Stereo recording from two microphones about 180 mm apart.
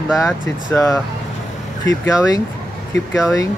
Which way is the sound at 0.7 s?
15° left (ahead or behind).